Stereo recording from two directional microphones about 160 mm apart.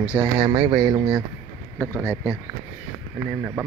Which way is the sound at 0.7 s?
20° right (ahead or behind).